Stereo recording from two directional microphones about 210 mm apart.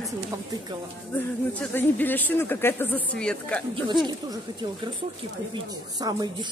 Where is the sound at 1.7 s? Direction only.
10° left (ahead or behind).